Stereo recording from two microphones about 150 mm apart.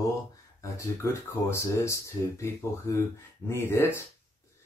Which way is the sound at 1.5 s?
20° left (ahead or behind).